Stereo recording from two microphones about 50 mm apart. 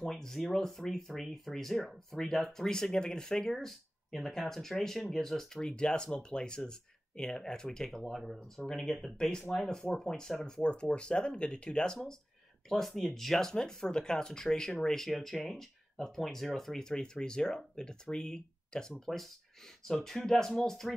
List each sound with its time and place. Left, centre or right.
0.0 s speech: centre